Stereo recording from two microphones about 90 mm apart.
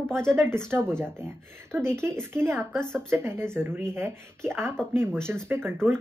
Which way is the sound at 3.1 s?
30° right (ahead or behind).